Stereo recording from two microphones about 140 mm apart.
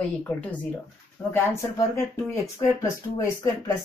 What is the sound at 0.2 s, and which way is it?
Speech, 10° left (ahead or behind).